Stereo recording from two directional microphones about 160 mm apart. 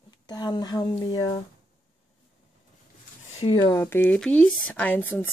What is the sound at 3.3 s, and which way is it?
Speech, 35° left (ahead or behind).